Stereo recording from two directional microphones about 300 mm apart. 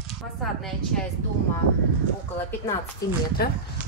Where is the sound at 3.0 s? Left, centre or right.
Centre.